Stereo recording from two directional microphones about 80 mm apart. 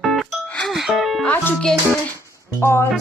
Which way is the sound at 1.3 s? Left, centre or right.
Left.